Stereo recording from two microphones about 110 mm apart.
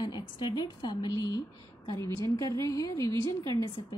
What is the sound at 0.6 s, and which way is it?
Speech, 35° left (ahead or behind).